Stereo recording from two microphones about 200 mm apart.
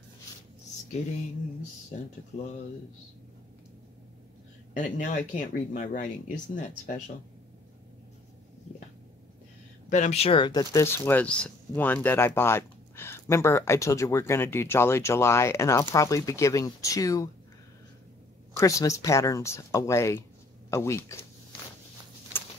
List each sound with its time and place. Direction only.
4.7 s speech: 40° left (ahead or behind)
9.8 s speech: 35° left (ahead or behind); by 17.3 s 15° left (ahead or behind)
18.6 s speech: 15° left (ahead or behind)